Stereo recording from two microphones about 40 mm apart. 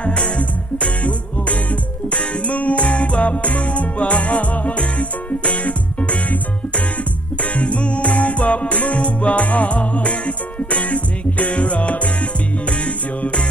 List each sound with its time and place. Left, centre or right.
0.0 s music: left
7.5 s music: left